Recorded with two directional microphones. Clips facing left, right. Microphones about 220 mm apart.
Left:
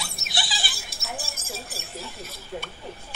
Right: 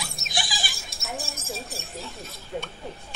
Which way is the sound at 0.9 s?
Centre (ahead or behind).